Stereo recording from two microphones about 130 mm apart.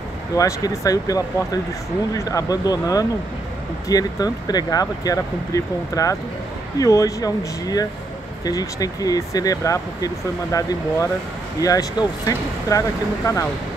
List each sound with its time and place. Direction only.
0.4 s speech: 25° left (ahead or behind)